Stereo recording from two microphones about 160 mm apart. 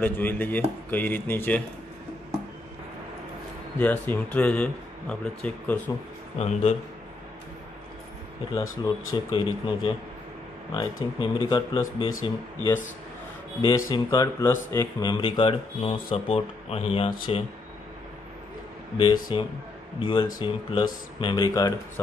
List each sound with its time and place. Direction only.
0.0 s speech: 10° left (ahead or behind)
3.7 s speech: 10° left (ahead or behind)
6.3 s speech: 40° left (ahead or behind)
8.5 s speech: 25° left (ahead or behind)
13.6 s speech: 25° left (ahead or behind)
19.3 s speech: 30° left (ahead or behind)